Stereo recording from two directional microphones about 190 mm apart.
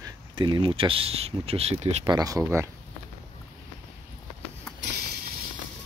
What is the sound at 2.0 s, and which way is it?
Speech, 20° right (ahead or behind).